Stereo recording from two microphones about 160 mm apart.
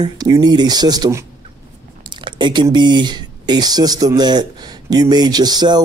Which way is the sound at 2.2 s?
30° right (ahead or behind).